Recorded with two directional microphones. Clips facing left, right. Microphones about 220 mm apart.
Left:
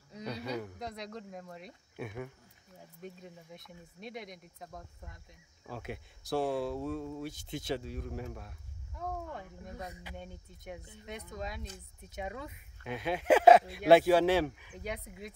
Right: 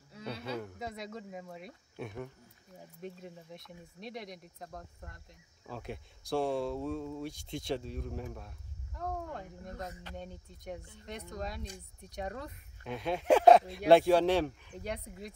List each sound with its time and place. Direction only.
0.2 s speech: centre (ahead or behind)